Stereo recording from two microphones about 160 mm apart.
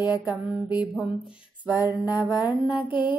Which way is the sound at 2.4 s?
10° right (ahead or behind).